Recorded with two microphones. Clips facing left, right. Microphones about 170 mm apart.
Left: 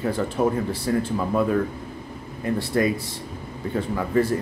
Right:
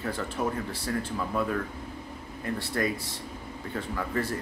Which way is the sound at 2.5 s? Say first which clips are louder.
Left 7 dB; 15° left (ahead or behind).